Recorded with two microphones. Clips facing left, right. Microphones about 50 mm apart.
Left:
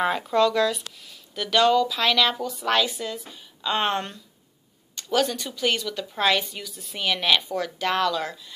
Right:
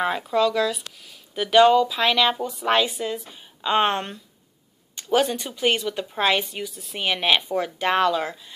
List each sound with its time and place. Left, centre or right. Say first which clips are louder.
0.0 s speech: even; centre
1.3 s a woman's voice: right 4 dB; centre